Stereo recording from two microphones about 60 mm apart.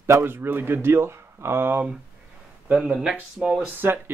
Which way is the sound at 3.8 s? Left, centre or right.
Right.